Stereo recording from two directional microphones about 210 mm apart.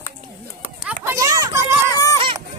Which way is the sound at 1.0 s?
15° right (ahead or behind).